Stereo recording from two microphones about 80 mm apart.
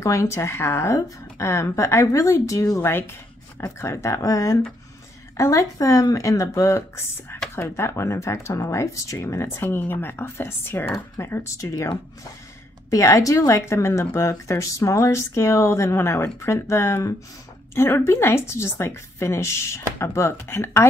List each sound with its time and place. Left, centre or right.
0.0 s speech: left
2.8 s speech: left
3.6 s speech: left
7.5 s speech: left
12.9 s speech: left